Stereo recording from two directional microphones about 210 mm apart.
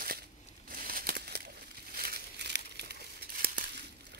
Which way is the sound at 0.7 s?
45° right (ahead or behind).